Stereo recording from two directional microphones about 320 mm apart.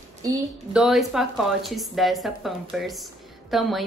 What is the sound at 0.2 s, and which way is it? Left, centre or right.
A woman's voice, centre.